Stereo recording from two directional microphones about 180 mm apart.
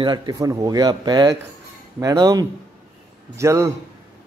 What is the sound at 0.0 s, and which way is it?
A man's voice, 20° right (ahead or behind).